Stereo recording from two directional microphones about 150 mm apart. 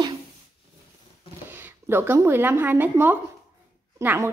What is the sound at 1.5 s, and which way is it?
Speech, 15° right (ahead or behind).